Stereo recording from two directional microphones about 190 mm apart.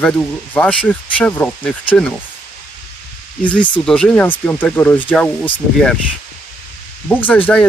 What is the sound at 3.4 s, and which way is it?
Speech, 5° left (ahead or behind).